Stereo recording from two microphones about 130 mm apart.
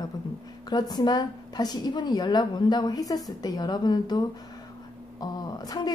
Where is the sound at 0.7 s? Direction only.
30° left (ahead or behind).